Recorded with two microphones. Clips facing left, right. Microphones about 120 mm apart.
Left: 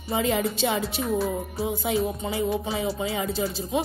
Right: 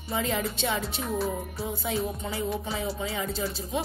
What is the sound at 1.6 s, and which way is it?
Music, 70° left (ahead or behind).